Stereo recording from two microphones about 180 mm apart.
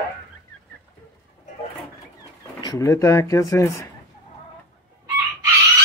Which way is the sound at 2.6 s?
15° left (ahead or behind).